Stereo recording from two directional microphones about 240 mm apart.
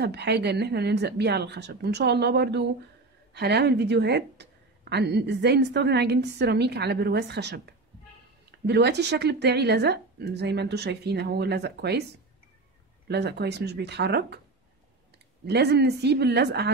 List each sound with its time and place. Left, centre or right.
0.0 s speech: right
13.1 s speech: right
15.4 s speech: right